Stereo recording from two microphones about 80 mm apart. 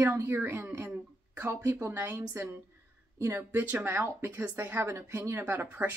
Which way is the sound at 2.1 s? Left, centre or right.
Right.